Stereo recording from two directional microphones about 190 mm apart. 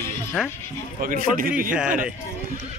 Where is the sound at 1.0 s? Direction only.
50° right (ahead or behind).